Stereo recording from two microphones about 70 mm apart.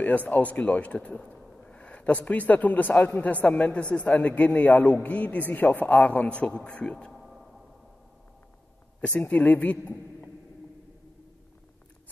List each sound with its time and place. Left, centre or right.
0.0 s a man's voice: left
7.1 s a sound: centre
9.3 s a man's voice: left